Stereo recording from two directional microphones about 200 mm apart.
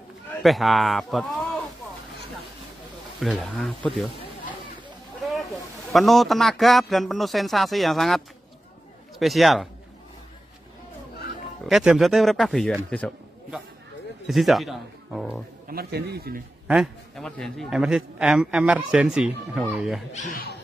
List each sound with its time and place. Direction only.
0.4 s a man's voice: centre (ahead or behind)
3.2 s a man's voice: centre (ahead or behind)
5.5 s a man's voice: centre (ahead or behind)
9.2 s a man's voice: centre (ahead or behind)
11.6 s a man's voice: centre (ahead or behind)
15.7 s a man's voice: 50° right (ahead or behind)
16.6 s a man's voice: centre (ahead or behind)
20.1 s speech: 40° left (ahead or behind)